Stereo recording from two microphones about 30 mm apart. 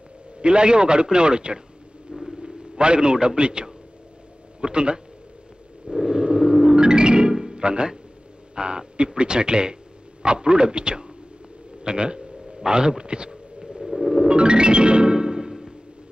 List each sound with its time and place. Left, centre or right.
0.4 s a man's voice: right
6.0 s music: right
7.6 s a man's voice: right
13.6 s a sound: centre
13.8 s music: centre
14.2 s music: right